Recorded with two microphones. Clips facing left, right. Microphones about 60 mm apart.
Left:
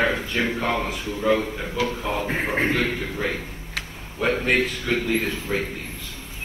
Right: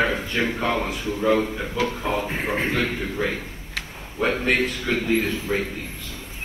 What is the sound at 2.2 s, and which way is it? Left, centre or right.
Speech, left.